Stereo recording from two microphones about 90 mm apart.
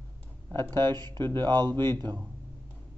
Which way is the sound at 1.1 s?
25° left (ahead or behind).